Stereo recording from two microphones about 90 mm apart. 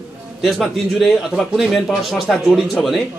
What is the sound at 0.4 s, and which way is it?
A man's voice, centre (ahead or behind).